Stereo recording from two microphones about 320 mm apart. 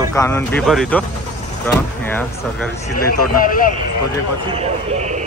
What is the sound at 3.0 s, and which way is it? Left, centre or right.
Speech, left.